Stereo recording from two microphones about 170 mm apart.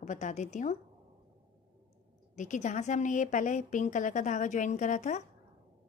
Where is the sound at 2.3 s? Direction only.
45° left (ahead or behind).